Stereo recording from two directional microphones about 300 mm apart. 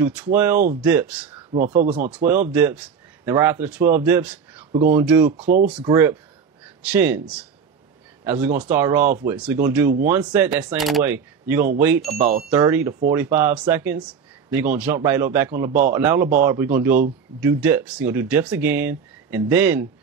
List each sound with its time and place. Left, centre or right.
0.0 s speech: centre
1.5 s speech: right
2.0 s speech: centre
5.4 s speech: right
5.8 s speech: centre
12.1 s speech: right
12.4 s speech: centre